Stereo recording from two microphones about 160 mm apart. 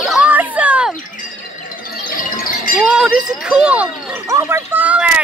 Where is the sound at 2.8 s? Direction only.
5° right (ahead or behind).